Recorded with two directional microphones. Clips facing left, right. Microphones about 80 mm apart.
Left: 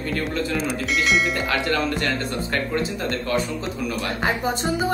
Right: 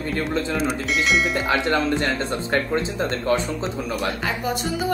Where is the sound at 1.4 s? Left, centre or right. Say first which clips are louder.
Right 2 dB; right.